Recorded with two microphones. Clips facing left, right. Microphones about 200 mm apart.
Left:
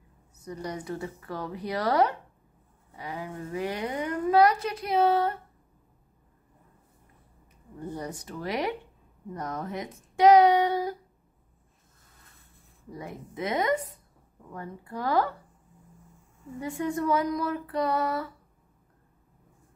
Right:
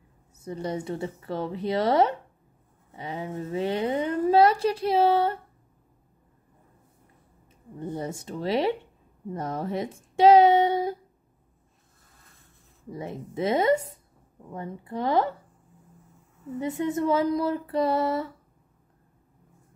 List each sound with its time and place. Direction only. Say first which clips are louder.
0.4 s a woman's voice: right 5 dB; 25° right (ahead or behind)
7.8 s a woman's voice: right 3 dB; 25° right (ahead or behind)
12.9 s a woman's voice: right 5 dB; 25° right (ahead or behind)
16.5 s a woman's voice: right 3 dB; 20° right (ahead or behind)